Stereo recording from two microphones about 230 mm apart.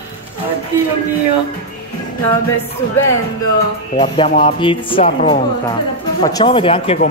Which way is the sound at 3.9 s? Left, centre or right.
Left.